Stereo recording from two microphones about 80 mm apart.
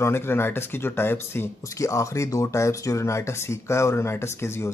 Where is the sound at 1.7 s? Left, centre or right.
Left.